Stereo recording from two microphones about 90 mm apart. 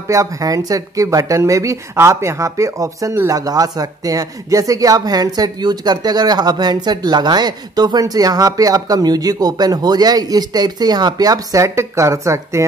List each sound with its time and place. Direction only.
0.1 s speech: 40° right (ahead or behind)